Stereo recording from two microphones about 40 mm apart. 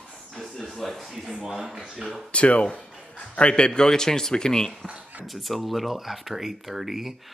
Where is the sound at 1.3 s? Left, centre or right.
Centre.